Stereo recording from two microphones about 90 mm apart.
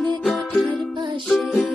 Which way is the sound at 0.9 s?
65° right (ahead or behind).